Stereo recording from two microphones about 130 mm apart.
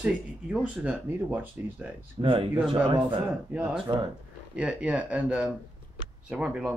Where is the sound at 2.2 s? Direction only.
30° right (ahead or behind).